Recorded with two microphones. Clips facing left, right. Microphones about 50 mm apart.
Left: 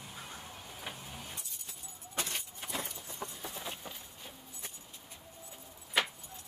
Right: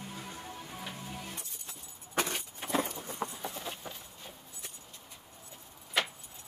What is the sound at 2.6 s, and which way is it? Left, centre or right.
Keys jangling, right.